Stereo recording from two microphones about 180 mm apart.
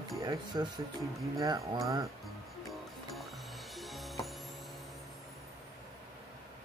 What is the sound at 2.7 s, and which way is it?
Music, centre (ahead or behind).